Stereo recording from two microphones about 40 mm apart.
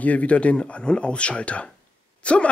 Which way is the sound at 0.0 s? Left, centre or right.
Left.